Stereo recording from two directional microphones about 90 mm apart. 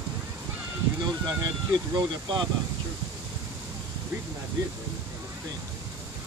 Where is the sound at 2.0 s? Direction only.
55° right (ahead or behind).